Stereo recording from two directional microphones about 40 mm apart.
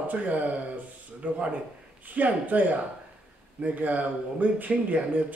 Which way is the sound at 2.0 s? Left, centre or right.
Right.